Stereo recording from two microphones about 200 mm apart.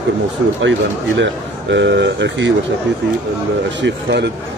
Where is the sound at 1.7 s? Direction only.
60° right (ahead or behind).